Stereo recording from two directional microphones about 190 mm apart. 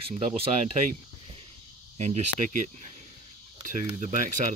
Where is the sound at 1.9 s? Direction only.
35° right (ahead or behind).